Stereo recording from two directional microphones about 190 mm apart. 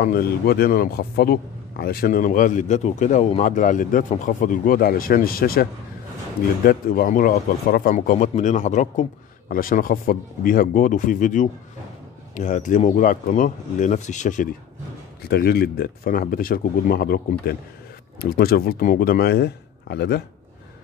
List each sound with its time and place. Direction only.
0.0 s speech: 50° left (ahead or behind)
15.2 s speech: 55° left (ahead or behind)